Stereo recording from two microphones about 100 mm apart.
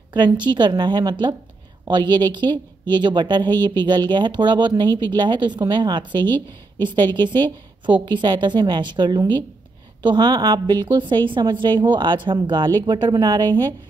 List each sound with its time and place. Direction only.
0.1 s a woman's voice: 50° right (ahead or behind)